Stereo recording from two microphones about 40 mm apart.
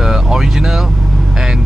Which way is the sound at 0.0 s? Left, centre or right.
Centre.